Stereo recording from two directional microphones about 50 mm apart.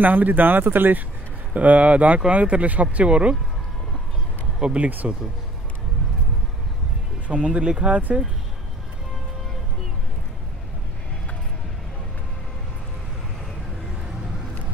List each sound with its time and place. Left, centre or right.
0.0 s speech: right
1.5 s speech: right
4.6 s speech: centre
4.8 s speech: right
7.2 s speech: right